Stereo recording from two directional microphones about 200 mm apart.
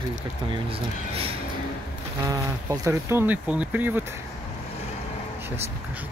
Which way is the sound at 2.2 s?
15° right (ahead or behind).